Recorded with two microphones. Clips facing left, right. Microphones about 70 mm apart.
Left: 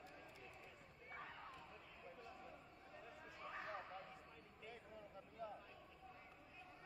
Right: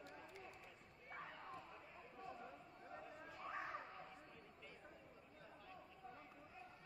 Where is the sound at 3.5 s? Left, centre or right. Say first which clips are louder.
Right 2 dB; centre.